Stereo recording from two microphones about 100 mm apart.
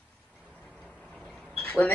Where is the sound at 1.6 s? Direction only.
15° left (ahead or behind).